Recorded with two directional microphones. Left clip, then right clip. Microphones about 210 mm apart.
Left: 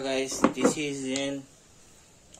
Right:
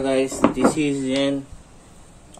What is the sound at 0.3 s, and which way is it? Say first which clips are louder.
Speech: right 6 dB; 55° left (ahead or behind).